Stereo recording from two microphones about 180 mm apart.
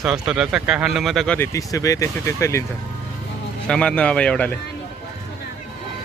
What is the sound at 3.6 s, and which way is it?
Speech, 5° left (ahead or behind).